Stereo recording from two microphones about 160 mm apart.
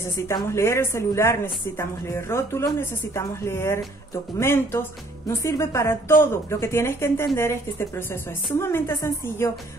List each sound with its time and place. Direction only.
0.3 s a woman's voice: 20° left (ahead or behind)
8.5 s a woman's voice: 15° left (ahead or behind)